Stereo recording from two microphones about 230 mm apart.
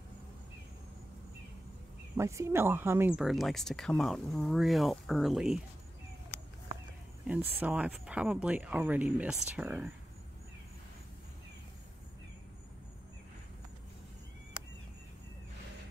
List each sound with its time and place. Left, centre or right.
2.1 s speech: centre
7.2 s speech: centre